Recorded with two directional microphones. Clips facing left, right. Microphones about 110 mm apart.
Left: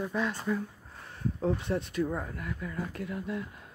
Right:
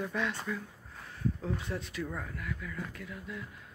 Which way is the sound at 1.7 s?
30° left (ahead or behind).